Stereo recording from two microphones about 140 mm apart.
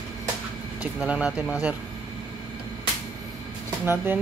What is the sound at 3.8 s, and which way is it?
Speech, 15° right (ahead or behind).